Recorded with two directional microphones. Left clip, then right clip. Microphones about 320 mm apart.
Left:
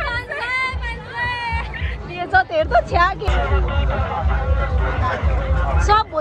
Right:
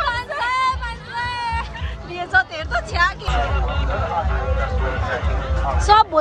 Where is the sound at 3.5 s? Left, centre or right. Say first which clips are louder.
Left 1 dB; left.